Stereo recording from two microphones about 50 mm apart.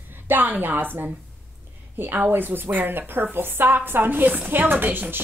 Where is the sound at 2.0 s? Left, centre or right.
Right.